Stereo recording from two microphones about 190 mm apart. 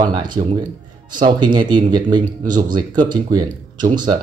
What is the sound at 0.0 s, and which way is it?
Speech, 25° right (ahead or behind).